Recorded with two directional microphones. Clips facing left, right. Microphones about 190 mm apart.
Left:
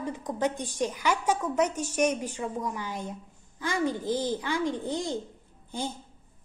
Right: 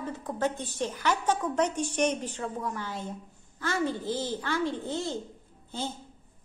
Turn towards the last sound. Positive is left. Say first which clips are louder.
# left 1 dB
turn(degrees=15)  # may be behind; listen again after turning